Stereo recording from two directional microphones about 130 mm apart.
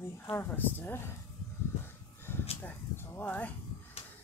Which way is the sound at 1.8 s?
20° left (ahead or behind).